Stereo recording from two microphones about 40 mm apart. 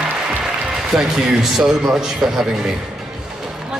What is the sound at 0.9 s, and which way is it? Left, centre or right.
A man's voice, centre.